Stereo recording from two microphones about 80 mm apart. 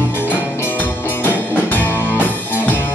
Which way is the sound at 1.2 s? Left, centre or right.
Left.